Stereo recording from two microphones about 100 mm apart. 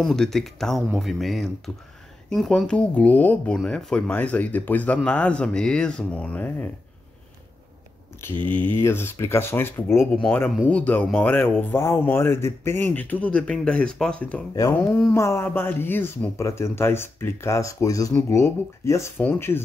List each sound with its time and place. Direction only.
0.0 s speech: 5° left (ahead or behind)
8.2 s speech: 20° left (ahead or behind)
15.0 s speech: 25° left (ahead or behind)